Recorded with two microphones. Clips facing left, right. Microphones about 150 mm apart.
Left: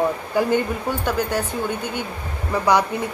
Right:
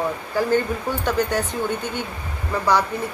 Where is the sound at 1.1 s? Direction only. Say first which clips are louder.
Right 2 dB; 5° left (ahead or behind).